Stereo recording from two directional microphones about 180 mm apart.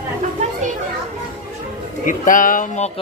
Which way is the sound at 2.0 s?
45° left (ahead or behind).